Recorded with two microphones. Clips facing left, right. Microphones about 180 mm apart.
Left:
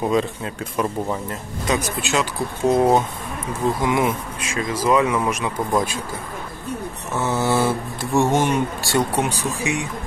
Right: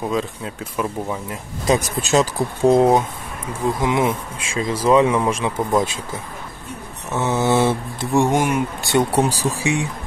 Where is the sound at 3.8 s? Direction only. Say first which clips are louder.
Right 1 dB; 25° right (ahead or behind).